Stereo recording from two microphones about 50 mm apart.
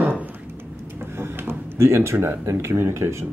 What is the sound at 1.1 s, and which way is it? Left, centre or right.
Door, right.